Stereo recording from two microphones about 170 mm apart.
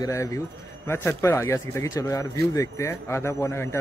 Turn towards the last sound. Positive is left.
turn(degrees=15)  # may be behind; listen again after turning